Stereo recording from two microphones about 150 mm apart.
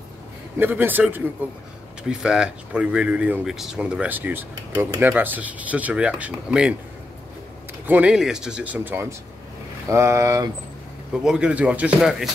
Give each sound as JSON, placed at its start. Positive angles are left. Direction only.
{"t": 0.6, "sound": "speech", "side_deg": -15}
{"t": 7.8, "sound": "speech", "side_deg": -10}
{"t": 11.2, "sound": "speech", "side_deg": -5}